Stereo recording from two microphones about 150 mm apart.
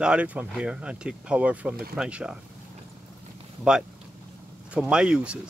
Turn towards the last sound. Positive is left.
turn(degrees=-5)  # may be behind; listen again after turning